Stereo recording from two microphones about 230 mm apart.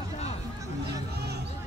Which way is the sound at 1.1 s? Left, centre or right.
Right.